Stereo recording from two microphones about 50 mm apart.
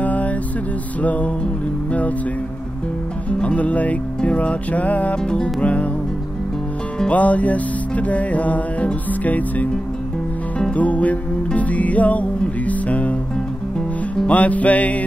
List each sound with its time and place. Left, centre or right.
0.0 s a sound: left
1.0 s music: left
3.3 s music: left
7.1 s music: left
10.7 s music: left
14.3 s music: left